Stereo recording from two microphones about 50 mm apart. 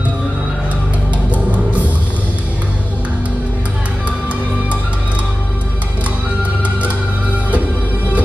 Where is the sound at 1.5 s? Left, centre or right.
Right.